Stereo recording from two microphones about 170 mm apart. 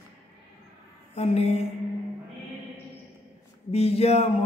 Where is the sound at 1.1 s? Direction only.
40° left (ahead or behind).